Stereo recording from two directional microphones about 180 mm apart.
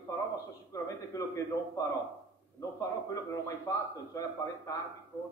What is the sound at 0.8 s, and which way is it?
A man's voice, 20° left (ahead or behind).